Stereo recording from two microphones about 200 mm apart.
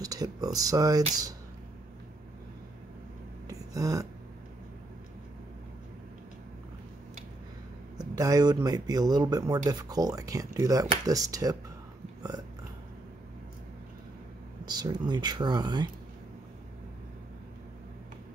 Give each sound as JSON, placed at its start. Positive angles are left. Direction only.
{"t": 0.0, "sound": "speech", "side_deg": -20}
{"t": 3.4, "sound": "a sound", "side_deg": -15}
{"t": 8.0, "sound": "speech", "side_deg": -15}
{"t": 12.2, "sound": "burping", "side_deg": -20}
{"t": 14.6, "sound": "speech", "side_deg": -20}